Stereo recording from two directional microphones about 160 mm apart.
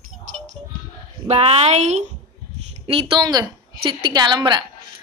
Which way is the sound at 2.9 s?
30° right (ahead or behind).